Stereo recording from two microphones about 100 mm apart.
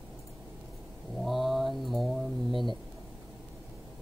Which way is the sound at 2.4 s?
50° right (ahead or behind).